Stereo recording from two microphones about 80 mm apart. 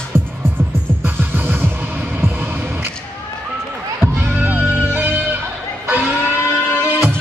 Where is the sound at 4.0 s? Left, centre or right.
Right.